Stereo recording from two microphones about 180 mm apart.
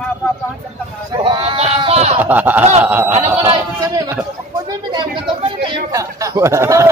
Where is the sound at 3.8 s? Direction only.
15° right (ahead or behind).